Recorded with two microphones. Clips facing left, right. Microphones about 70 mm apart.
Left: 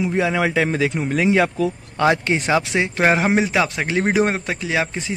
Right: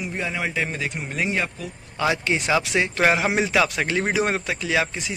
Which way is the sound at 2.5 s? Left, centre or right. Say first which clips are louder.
Left 2 dB; left.